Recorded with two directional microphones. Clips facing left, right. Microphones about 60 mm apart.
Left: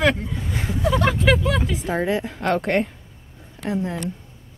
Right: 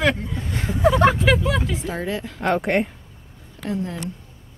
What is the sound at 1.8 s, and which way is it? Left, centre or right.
Speech, left.